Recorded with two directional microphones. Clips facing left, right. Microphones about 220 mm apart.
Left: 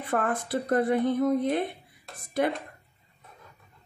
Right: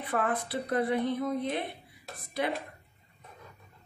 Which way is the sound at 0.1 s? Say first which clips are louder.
Left 3 dB; 45° left (ahead or behind).